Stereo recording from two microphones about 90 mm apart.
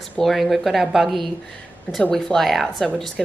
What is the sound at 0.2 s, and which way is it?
A woman's voice, centre (ahead or behind).